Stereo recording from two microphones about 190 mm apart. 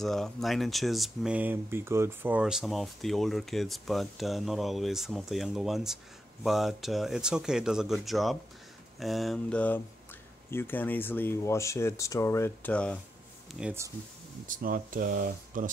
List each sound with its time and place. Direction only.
0.0 s speech: centre (ahead or behind)
13.6 s speech: 5° right (ahead or behind)
14.5 s speech: 45° right (ahead or behind)